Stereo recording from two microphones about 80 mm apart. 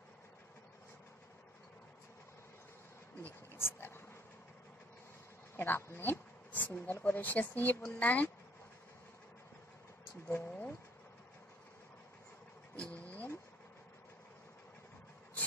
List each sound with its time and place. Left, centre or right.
3.5 s dog: left
5.6 s speech: left
10.2 s speech: left
12.7 s vehicle: centre